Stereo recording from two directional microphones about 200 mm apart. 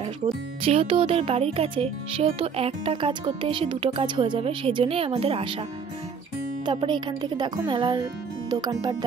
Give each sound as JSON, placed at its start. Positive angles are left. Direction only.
{"t": 0.6, "sound": "speech", "side_deg": -30}
{"t": 6.6, "sound": "speech", "side_deg": -25}